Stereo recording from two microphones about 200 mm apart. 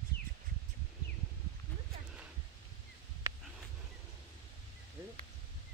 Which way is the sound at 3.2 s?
15° right (ahead or behind).